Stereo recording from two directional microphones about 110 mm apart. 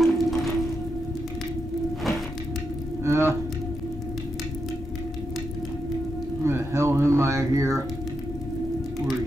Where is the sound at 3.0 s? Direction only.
25° right (ahead or behind).